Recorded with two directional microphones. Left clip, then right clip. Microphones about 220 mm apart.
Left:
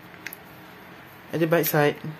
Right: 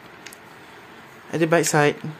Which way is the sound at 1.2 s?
15° right (ahead or behind).